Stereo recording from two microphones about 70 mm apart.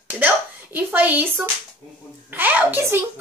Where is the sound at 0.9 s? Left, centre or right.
Right.